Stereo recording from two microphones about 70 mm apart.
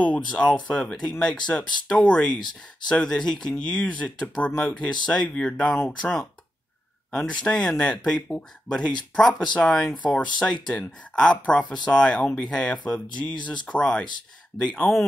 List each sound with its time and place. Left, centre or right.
0.0 s speech: centre